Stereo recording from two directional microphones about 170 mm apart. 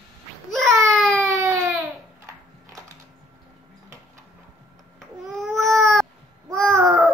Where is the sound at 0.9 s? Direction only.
5° left (ahead or behind).